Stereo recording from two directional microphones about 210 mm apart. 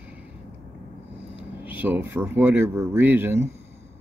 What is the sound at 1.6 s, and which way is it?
Speech, 10° right (ahead or behind).